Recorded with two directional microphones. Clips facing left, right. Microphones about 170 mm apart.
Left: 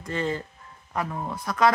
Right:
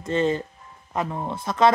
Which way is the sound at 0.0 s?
20° right (ahead or behind).